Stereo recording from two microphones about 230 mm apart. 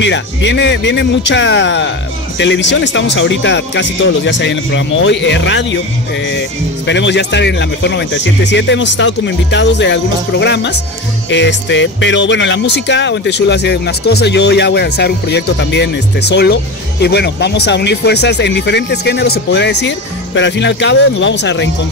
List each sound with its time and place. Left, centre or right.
0.0 s speech: left
6.9 s speech: left